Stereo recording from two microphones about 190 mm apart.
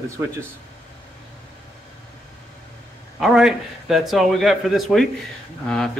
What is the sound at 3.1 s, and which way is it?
A man's voice, centre (ahead or behind).